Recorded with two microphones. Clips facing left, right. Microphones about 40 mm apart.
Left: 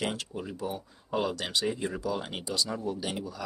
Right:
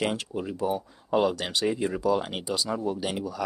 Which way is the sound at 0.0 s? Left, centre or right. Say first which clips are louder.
Right 5 dB; centre.